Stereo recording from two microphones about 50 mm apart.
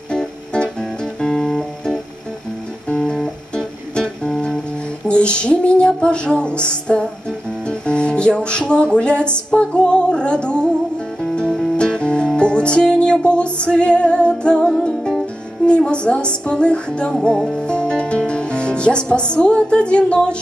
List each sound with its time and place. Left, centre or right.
0.1 s music: centre
3.5 s music: centre
5.0 s a sound: left
5.9 s music: left
11.7 s music: centre